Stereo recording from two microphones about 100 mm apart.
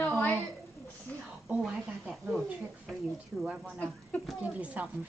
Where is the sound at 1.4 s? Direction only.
5° right (ahead or behind).